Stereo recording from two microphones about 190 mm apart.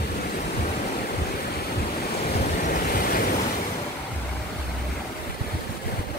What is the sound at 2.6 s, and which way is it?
Vehicle, 50° left (ahead or behind).